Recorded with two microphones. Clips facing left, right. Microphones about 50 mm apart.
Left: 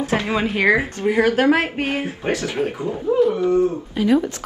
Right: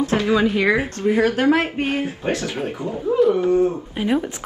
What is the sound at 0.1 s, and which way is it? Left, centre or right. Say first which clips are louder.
Speech: right 2 dB; left.